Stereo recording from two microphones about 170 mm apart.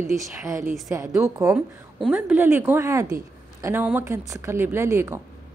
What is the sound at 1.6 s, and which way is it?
A woman's voice, 5° right (ahead or behind).